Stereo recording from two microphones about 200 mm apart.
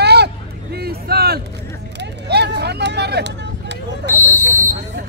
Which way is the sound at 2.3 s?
55° right (ahead or behind).